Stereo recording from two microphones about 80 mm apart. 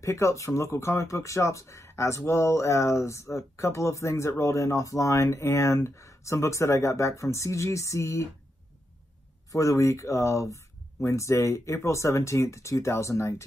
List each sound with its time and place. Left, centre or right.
0.0 s speech: left
9.5 s speech: left